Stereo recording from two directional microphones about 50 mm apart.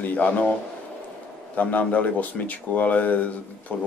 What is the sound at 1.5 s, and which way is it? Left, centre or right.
Speech, left.